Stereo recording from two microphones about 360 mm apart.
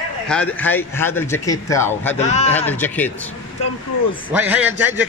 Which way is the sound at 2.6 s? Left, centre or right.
Centre.